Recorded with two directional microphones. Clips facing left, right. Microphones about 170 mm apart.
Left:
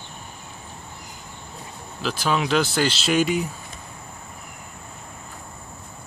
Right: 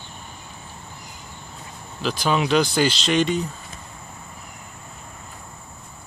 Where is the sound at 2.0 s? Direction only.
Centre (ahead or behind).